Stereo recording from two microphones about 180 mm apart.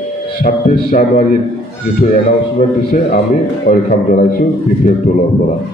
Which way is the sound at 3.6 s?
55° left (ahead or behind).